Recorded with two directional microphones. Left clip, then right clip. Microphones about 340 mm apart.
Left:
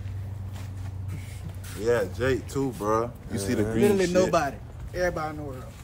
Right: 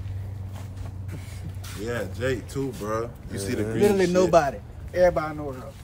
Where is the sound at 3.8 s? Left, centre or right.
Right.